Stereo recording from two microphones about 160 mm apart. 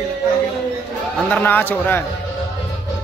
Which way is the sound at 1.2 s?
10° left (ahead or behind).